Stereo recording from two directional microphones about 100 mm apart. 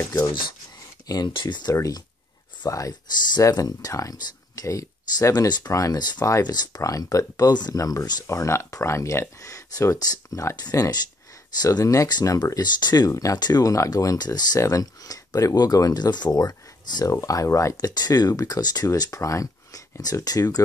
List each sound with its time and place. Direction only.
1.0 s speech: 40° left (ahead or behind)
17.7 s speech: 45° left (ahead or behind)